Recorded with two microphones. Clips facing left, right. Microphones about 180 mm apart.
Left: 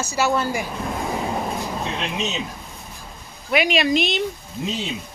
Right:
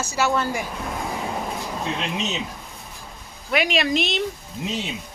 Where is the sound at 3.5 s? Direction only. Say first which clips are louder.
Left 2 dB; centre (ahead or behind).